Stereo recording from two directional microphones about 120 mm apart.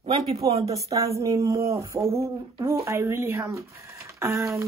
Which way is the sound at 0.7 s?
30° right (ahead or behind).